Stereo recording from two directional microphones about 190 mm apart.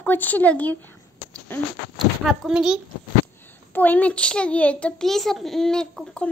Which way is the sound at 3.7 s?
10° left (ahead or behind).